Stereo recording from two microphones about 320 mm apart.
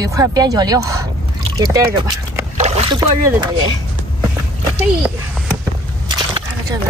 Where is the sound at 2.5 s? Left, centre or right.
Centre.